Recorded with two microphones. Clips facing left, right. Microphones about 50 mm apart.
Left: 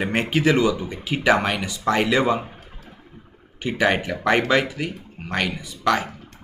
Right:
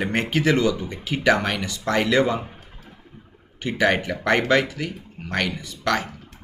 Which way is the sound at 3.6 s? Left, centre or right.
Centre.